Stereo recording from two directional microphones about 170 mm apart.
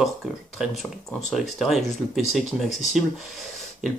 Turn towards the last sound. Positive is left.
turn(degrees=0)  # may be behind; listen again after turning